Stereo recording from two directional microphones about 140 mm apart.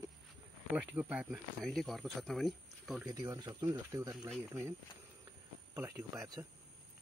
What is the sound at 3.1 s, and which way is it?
Speech, 25° right (ahead or behind).